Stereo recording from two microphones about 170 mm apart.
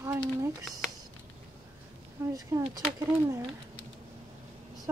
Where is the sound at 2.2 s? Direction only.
15° right (ahead or behind).